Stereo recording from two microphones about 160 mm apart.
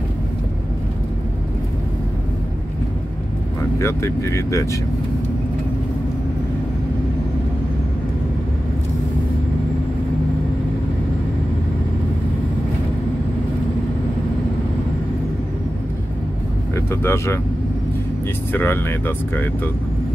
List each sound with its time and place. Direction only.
3.7 s speech: 15° left (ahead or behind)
16.7 s speech: 15° left (ahead or behind)
18.5 s speech: 15° left (ahead or behind)